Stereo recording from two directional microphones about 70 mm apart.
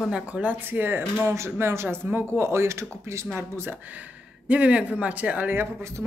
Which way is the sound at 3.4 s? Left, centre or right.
Right.